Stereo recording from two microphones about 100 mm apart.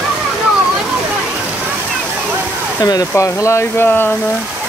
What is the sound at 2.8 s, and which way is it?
Speech, 35° left (ahead or behind).